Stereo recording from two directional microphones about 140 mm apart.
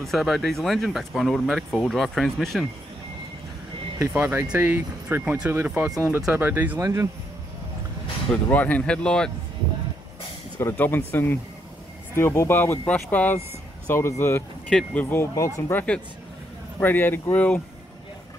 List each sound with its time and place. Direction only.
0.0 s speech: centre (ahead or behind)
4.0 s speech: 15° right (ahead or behind)
8.5 s speech: 10° left (ahead or behind)
10.6 s speech: 15° left (ahead or behind)
14.7 s speech: 10° left (ahead or behind)
16.8 s speech: 15° left (ahead or behind)